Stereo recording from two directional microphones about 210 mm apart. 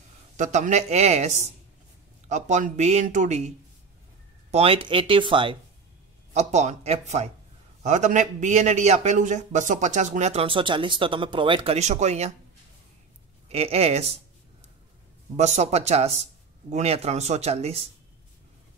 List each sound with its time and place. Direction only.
0.4 s a man's voice: 35° right (ahead or behind)
13.5 s speech: 30° right (ahead or behind)
15.3 s a man's voice: 30° right (ahead or behind)